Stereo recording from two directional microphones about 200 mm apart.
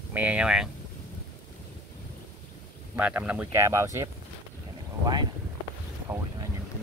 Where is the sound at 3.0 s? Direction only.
5° right (ahead or behind).